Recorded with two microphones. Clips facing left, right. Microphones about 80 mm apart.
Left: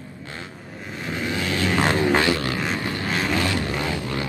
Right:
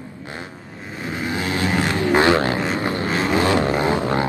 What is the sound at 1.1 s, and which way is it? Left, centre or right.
Vehicle, right.